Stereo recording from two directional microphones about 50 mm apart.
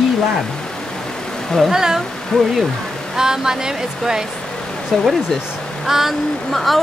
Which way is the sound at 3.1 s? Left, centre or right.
Centre.